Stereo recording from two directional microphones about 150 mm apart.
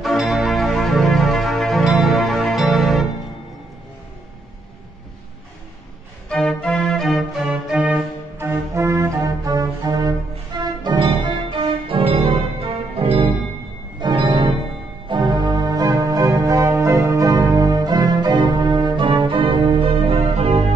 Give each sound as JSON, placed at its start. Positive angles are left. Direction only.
{"t": 0.0, "sound": "music", "side_deg": 0}
{"t": 6.2, "sound": "music", "side_deg": 5}
{"t": 13.9, "sound": "organ", "side_deg": -30}
{"t": 15.0, "sound": "music", "side_deg": -30}